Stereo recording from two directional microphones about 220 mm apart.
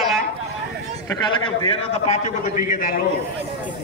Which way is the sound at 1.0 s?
20° left (ahead or behind).